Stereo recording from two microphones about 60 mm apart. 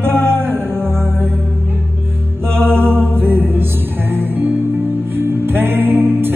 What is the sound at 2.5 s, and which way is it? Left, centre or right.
Mantra, right.